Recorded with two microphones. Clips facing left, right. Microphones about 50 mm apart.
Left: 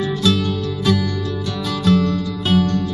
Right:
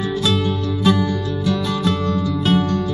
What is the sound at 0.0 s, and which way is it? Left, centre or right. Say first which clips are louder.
Music: left 1 dB; centre.